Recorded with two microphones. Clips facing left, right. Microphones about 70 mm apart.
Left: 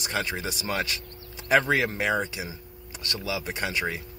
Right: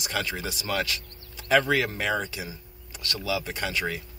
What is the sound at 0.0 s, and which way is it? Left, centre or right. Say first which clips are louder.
Speech: left 1 dB; left.